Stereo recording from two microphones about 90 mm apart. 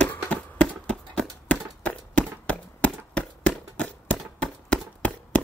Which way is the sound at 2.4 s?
15° left (ahead or behind).